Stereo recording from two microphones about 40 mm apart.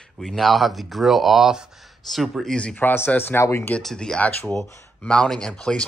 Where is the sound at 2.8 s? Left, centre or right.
Left.